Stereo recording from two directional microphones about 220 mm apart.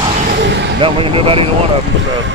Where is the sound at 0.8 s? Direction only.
25° right (ahead or behind).